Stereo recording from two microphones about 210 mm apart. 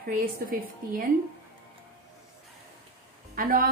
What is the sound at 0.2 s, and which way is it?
Speech, 40° right (ahead or behind).